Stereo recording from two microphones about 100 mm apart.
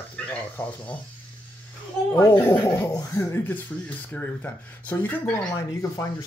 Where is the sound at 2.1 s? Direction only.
25° left (ahead or behind).